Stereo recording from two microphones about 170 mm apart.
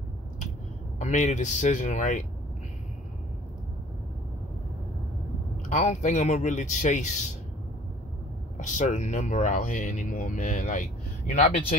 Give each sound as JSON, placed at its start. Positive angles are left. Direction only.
{"t": 0.9, "sound": "speech", "side_deg": 45}
{"t": 5.7, "sound": "speech", "side_deg": 45}
{"t": 8.5, "sound": "speech", "side_deg": 45}